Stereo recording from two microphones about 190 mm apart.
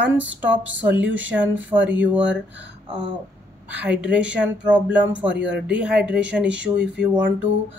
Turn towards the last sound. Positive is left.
turn(degrees=-10)  # may be behind; listen again after turning